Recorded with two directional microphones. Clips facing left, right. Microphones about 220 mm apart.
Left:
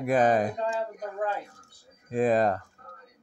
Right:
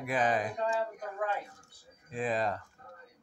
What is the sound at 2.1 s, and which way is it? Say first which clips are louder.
Speech: left 9 dB; 45° left (ahead or behind).